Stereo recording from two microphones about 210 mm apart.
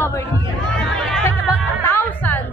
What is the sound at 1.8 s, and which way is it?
Music, 10° left (ahead or behind).